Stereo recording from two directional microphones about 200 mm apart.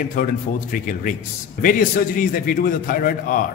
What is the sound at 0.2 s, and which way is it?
A man's voice, 45° left (ahead or behind).